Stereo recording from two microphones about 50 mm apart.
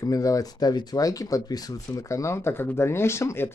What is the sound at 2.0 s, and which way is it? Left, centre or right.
Speech, left.